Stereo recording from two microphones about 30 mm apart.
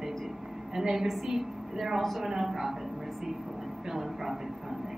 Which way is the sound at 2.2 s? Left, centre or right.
Centre.